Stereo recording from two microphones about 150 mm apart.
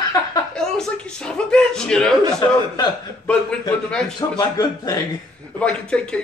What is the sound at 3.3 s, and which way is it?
Speech, 5° left (ahead or behind).